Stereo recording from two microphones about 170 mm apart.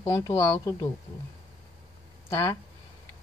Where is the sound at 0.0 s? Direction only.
20° left (ahead or behind).